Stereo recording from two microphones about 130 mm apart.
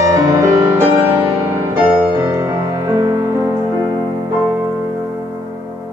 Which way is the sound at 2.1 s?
30° right (ahead or behind).